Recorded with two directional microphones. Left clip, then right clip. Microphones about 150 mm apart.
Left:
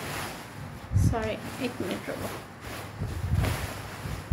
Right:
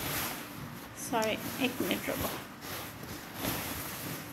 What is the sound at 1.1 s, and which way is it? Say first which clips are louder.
Speech: right 2 dB; centre (ahead or behind).